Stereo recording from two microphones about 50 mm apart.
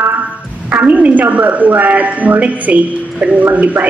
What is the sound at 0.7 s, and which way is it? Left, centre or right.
A man's voice, right.